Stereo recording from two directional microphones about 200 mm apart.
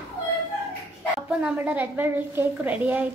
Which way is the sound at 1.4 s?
10° right (ahead or behind).